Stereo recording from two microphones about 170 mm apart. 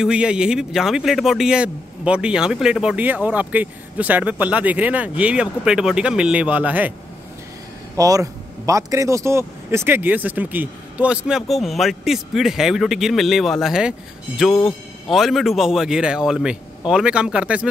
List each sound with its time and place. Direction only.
0.0 s a man's voice: 5° right (ahead or behind)
8.0 s a man's voice: 20° right (ahead or behind)